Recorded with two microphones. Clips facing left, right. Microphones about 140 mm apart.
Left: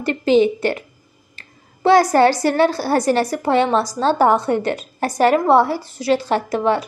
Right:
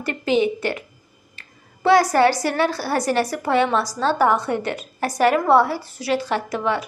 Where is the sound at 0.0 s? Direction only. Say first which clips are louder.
Left 5 dB; 30° left (ahead or behind).